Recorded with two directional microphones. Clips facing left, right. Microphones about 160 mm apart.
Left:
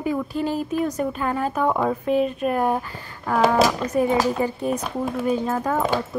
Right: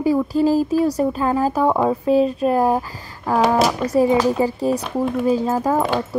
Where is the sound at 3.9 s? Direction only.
35° right (ahead or behind).